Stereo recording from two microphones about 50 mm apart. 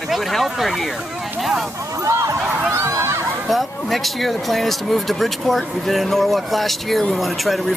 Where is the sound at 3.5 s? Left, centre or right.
Centre.